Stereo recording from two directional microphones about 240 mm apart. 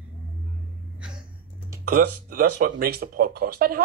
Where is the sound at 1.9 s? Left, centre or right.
Right.